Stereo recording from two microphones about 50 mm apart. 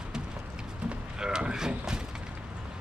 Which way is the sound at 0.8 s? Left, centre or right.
Centre.